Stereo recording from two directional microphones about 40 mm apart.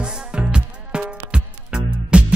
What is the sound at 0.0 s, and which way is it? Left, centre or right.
Music, right.